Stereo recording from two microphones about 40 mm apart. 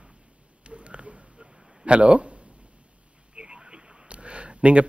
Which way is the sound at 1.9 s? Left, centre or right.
Right.